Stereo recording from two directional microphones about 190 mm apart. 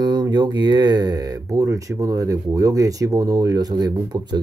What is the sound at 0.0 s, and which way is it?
Speech, 20° right (ahead or behind).